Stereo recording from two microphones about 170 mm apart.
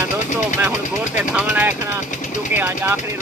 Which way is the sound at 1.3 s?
10° right (ahead or behind).